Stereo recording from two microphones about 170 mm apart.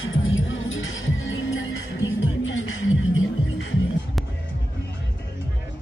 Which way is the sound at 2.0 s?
90° left.